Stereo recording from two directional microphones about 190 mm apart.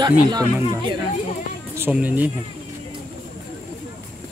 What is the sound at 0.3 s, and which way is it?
Speech, 20° right (ahead or behind).